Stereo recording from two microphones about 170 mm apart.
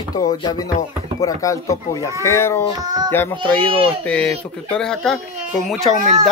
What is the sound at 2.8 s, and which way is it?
Child singing, 25° right (ahead or behind).